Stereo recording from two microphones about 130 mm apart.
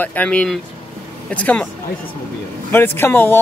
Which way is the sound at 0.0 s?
10° left (ahead or behind).